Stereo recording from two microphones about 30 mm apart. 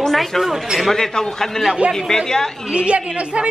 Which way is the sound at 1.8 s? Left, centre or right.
Right.